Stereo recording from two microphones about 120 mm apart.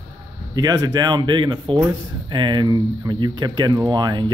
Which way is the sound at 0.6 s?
30° right (ahead or behind).